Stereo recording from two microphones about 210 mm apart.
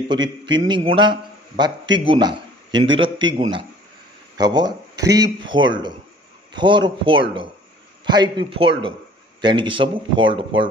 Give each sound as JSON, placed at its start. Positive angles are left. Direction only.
{"t": 0.1, "sound": "a man's voice", "side_deg": -20}